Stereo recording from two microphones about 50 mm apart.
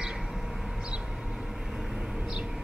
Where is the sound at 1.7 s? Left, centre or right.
Centre.